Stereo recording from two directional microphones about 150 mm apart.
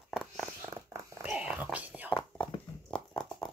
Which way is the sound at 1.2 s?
5° right (ahead or behind).